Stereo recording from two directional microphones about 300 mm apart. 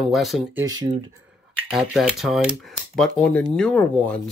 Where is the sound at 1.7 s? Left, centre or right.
Centre.